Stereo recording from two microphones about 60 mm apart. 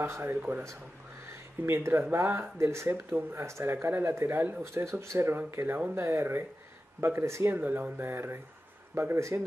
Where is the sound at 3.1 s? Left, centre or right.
Right.